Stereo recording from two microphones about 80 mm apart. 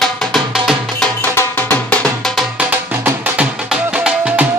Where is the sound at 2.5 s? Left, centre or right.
Centre.